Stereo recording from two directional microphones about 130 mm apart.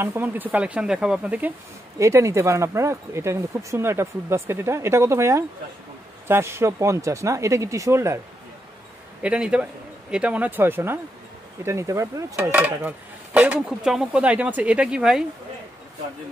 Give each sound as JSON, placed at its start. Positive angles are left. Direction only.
{"t": 0.0, "sound": "speech", "side_deg": -15}
{"t": 2.0, "sound": "speech", "side_deg": -25}
{"t": 9.2, "sound": "speech", "side_deg": -10}
{"t": 12.5, "sound": "speech", "side_deg": -10}